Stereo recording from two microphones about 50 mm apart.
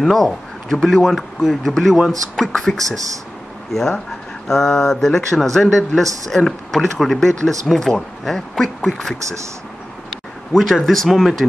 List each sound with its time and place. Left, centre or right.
0.0 s a man's voice: centre
4.5 s speech: centre
10.6 s speech: centre